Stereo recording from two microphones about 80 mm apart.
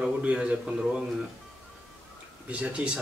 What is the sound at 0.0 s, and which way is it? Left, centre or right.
Speech, centre.